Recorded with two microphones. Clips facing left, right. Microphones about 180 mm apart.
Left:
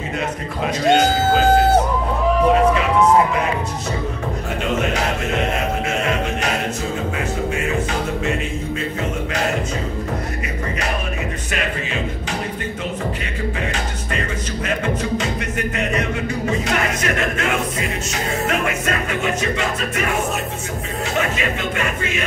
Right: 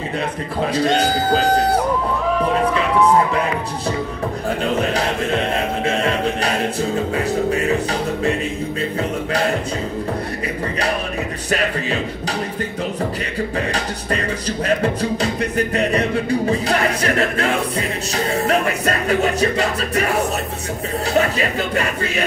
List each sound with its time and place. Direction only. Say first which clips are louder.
0.7 s music: left 3 dB; 35° right (ahead or behind)
4.7 s music: right 1 dB; 35° right (ahead or behind)
7.5 s music: right 3 dB; 35° right (ahead or behind)
14.8 s music: right 2 dB; 35° right (ahead or behind)